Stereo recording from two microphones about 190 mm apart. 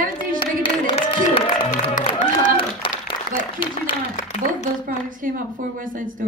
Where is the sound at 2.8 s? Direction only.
25° left (ahead or behind).